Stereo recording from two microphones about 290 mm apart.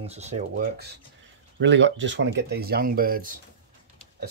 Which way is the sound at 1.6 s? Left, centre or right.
Right.